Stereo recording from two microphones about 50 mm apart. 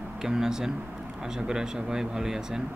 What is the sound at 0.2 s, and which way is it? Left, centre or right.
Speech, centre.